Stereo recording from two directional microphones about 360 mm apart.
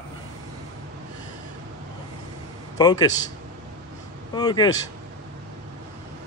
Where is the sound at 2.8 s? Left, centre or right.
Centre.